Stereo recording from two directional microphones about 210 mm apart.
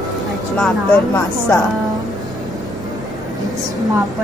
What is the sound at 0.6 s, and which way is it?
Speech, 10° left (ahead or behind).